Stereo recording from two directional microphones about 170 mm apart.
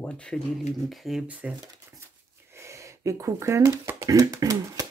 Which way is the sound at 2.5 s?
15° right (ahead or behind).